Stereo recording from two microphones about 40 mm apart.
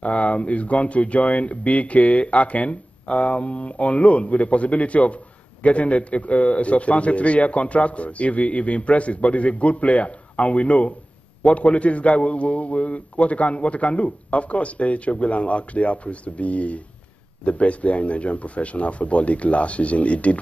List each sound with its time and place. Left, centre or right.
0.0 s speech: left